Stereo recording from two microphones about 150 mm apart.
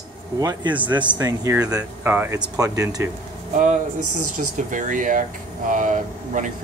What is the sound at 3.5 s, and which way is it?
Speech, 60° right (ahead or behind).